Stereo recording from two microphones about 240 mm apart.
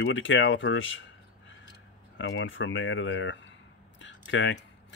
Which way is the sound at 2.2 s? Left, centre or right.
Left.